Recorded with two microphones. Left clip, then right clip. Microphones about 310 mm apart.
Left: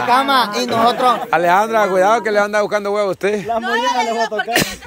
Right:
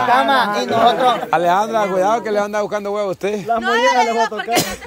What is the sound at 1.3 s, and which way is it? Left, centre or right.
Speech, centre.